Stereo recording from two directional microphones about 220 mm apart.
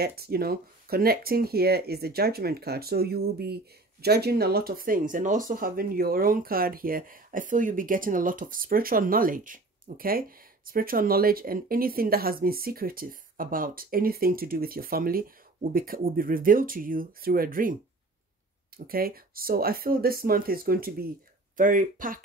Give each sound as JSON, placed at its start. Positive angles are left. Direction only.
{"t": 0.0, "sound": "speech", "side_deg": -45}
{"t": 18.9, "sound": "speech", "side_deg": -40}